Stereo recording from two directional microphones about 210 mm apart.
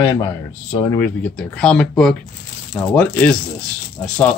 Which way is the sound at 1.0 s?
5° left (ahead or behind).